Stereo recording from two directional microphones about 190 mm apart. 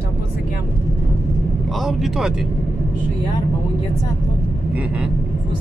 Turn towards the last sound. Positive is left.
turn(degrees=-5)  # may be behind; listen again after turning